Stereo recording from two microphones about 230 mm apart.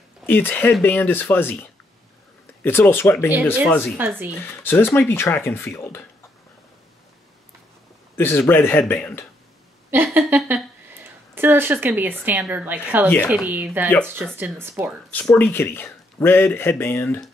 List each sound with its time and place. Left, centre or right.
0.3 s speech: centre
8.2 s speech: centre
9.8 s speech: centre
15.0 s speech: centre